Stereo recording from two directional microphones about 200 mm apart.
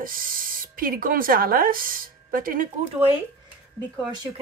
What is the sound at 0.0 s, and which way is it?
Speech, 45° right (ahead or behind).